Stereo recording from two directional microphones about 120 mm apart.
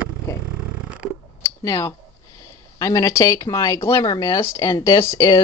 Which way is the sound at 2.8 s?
25° left (ahead or behind).